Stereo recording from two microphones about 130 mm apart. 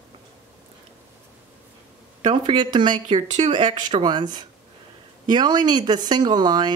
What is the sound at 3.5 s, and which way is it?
Speech, 35° right (ahead or behind).